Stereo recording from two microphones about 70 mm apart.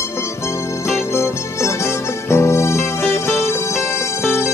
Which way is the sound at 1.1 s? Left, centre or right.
Left.